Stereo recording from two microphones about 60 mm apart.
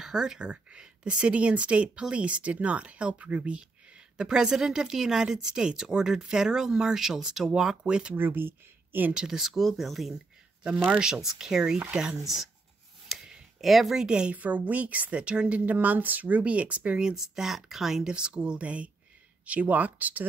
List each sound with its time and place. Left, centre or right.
0.0 s speech: centre
8.1 s speech: right
9.1 s speech: centre
13.1 s a sound: centre
14.0 s a woman's voice: centre